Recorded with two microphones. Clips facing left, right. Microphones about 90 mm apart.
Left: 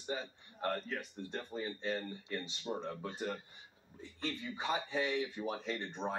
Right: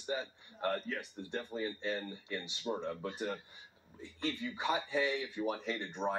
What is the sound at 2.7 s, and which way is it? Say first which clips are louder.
Speech: right 3 dB; 5° right (ahead or behind).